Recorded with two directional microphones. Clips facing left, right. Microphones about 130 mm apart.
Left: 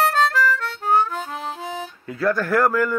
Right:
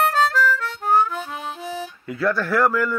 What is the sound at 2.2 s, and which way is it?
Speech, 45° left (ahead or behind).